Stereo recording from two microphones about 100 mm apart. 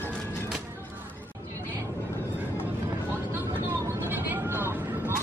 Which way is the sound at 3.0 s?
25° right (ahead or behind).